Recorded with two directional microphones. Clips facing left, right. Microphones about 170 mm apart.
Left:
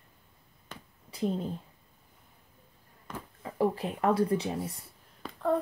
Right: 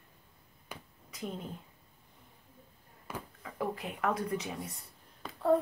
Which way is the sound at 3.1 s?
10° right (ahead or behind).